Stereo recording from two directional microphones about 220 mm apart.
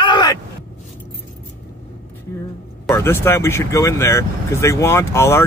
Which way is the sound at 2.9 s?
10° left (ahead or behind).